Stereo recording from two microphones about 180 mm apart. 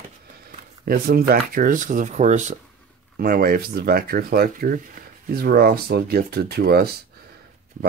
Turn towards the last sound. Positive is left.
turn(degrees=-60)  # may be behind; listen again after turning